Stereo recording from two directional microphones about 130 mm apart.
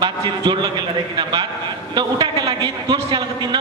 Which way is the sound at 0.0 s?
35° right (ahead or behind).